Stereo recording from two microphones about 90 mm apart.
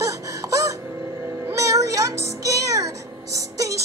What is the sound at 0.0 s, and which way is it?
Wail, 35° right (ahead or behind).